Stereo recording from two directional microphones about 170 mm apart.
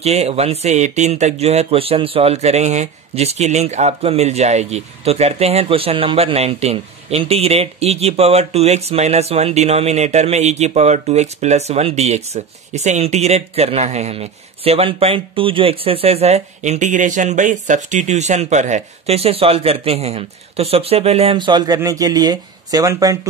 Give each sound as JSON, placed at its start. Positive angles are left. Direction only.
{"t": 0.0, "sound": "speech", "side_deg": -40}